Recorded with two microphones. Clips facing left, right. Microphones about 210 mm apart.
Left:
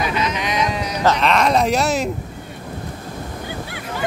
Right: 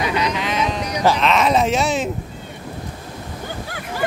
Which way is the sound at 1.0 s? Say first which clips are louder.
Even; centre (ahead or behind).